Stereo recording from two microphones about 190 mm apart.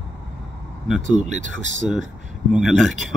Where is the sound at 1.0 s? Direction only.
40° right (ahead or behind).